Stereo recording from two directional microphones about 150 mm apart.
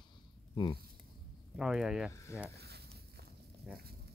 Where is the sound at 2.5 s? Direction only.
90° right.